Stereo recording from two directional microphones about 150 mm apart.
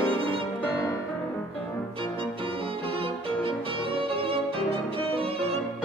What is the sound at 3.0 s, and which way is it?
Violin, 35° right (ahead or behind).